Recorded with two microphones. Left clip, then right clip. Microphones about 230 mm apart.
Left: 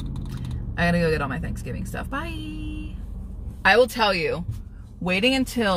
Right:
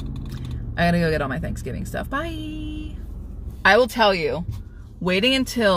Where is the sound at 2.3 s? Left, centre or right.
Left.